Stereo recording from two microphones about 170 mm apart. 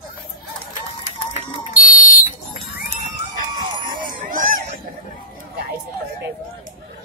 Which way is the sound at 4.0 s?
55° right (ahead or behind).